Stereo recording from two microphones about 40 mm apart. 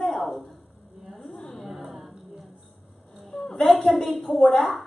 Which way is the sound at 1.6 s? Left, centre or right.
Centre.